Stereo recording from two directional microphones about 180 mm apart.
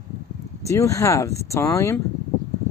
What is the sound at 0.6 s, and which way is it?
Speech, 15° left (ahead or behind).